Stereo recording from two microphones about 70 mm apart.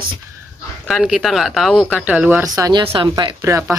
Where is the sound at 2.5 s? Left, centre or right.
Right.